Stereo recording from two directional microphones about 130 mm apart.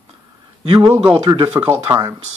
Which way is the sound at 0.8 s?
20° right (ahead or behind).